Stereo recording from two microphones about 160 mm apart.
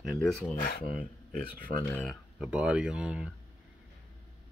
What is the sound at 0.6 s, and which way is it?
Speech, 70° left (ahead or behind).